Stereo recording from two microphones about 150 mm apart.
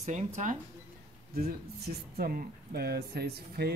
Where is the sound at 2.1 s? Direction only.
85° right.